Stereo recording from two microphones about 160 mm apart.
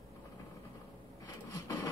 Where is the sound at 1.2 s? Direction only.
25° left (ahead or behind).